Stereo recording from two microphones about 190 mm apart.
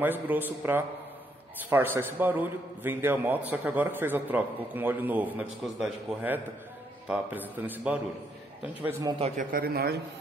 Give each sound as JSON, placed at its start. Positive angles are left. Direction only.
{"t": 0.0, "sound": "a man's voice", "side_deg": -10}
{"t": 9.2, "sound": "a man's voice", "side_deg": -45}